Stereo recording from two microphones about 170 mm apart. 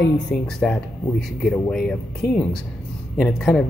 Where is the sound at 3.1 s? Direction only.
Centre (ahead or behind).